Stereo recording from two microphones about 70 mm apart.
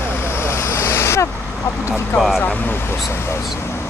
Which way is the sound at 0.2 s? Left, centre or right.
Left.